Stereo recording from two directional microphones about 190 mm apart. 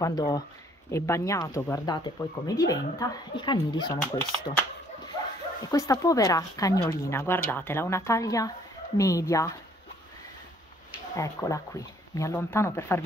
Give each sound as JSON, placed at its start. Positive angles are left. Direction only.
{"t": 0.0, "sound": "speech", "side_deg": 20}
{"t": 5.7, "sound": "speech", "side_deg": 20}
{"t": 11.1, "sound": "speech", "side_deg": 15}